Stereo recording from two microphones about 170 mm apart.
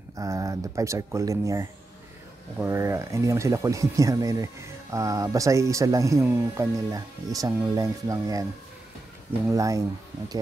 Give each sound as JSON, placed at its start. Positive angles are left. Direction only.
{"t": 0.2, "sound": "speech", "side_deg": -20}
{"t": 9.5, "sound": "speech", "side_deg": -20}